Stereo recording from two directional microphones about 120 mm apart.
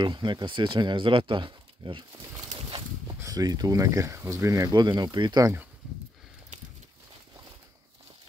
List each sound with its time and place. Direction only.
0.0 s speech: 40° right (ahead or behind)
3.2 s speech: 30° right (ahead or behind)